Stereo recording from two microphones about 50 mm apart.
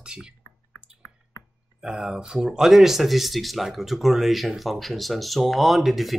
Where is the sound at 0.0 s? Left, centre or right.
Centre.